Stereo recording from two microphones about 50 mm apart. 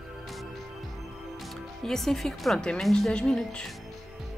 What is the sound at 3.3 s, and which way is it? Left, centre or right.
Speech, centre.